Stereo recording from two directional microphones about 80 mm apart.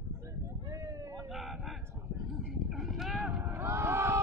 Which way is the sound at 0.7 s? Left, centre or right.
Right.